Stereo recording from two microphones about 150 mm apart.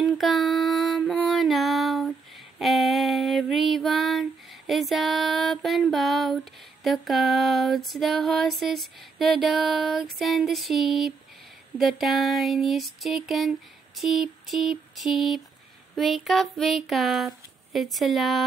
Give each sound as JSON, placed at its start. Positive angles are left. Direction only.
{"t": 0.0, "sound": "music", "side_deg": 0}
{"t": 2.6, "sound": "female singing", "side_deg": 0}
{"t": 10.1, "sound": "a sound", "side_deg": 0}